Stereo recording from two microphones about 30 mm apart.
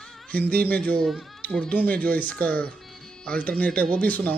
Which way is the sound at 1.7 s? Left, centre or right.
Left.